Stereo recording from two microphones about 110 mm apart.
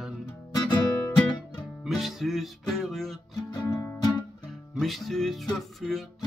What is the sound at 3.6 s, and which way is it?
Music, 25° left (ahead or behind).